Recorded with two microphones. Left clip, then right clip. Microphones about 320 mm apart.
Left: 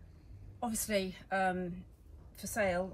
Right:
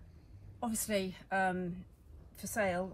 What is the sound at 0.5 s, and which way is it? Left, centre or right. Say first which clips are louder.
A woman's voice: left 1 dB; centre.